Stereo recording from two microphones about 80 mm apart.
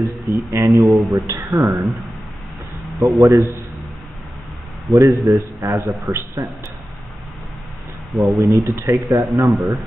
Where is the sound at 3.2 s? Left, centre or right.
Right.